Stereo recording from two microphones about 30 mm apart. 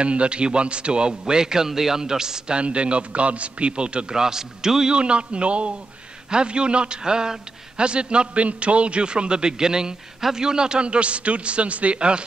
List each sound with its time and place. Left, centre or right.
0.0 s a man's voice: right
2.5 s a man's voice: right
4.1 s a man's voice: centre
4.9 s a man's voice: right
8.5 s a man's voice: right
12.0 s a man's voice: right